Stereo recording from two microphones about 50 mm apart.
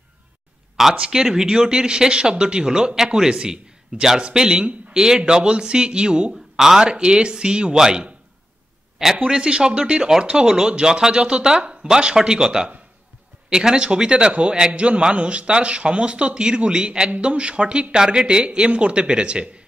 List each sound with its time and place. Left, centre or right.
0.9 s speech: centre
8.9 s a sound: centre
9.2 s a man's voice: right